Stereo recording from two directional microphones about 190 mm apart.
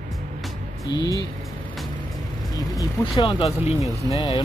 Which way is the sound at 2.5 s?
20° left (ahead or behind).